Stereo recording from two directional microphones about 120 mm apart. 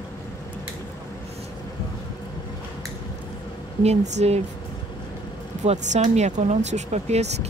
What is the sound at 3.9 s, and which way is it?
Speech, 70° right (ahead or behind).